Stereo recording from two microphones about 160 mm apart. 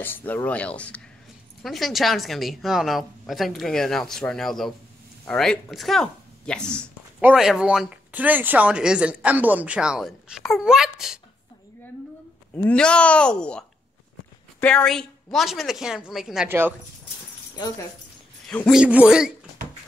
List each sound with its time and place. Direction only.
0.0 s speech: 10° left (ahead or behind)
7.2 s speech: 5° right (ahead or behind)
12.5 s speech: 10° left (ahead or behind)
16.4 s speech: 15° right (ahead or behind)
17.6 s speech: 25° left (ahead or behind)
18.7 s speech: 5° right (ahead or behind)